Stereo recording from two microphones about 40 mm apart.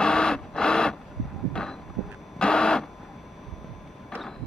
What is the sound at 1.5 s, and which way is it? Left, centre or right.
Heart sounds, centre.